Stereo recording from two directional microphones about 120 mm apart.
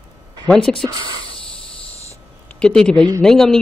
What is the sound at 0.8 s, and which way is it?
Speech, 40° right (ahead or behind).